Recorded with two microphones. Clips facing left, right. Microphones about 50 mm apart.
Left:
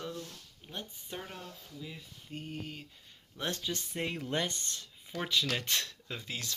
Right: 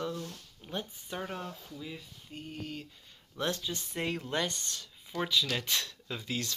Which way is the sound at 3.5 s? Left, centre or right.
Left.